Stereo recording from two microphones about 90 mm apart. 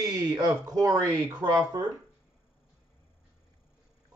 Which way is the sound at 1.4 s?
55° right (ahead or behind).